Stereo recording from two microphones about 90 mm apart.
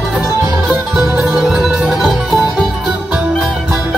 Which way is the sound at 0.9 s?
20° right (ahead or behind).